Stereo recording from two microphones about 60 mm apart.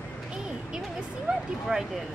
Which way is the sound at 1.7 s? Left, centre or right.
Centre.